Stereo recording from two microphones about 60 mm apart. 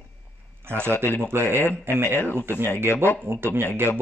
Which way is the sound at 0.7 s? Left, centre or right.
Right.